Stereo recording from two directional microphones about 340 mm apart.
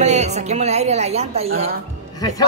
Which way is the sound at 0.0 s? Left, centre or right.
Centre.